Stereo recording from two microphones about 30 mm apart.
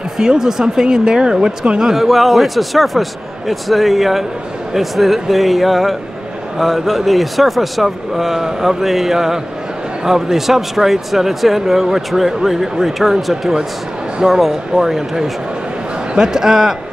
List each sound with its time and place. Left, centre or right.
0.2 s speech: centre
2.0 s a man's voice: centre